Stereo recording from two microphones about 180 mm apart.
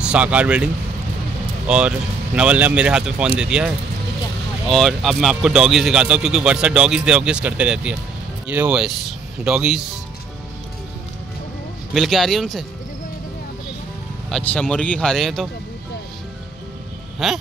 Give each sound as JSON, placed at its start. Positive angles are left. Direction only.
{"t": 0.0, "sound": "speech", "side_deg": -5}
{"t": 1.7, "sound": "speech", "side_deg": -5}
{"t": 11.9, "sound": "speech", "side_deg": 0}
{"t": 14.3, "sound": "speech", "side_deg": 5}
{"t": 17.2, "sound": "speech", "side_deg": 0}